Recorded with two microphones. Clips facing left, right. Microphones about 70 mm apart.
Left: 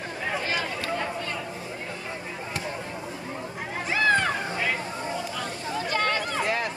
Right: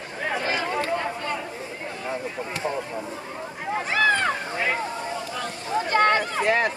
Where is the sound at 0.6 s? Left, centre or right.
Right.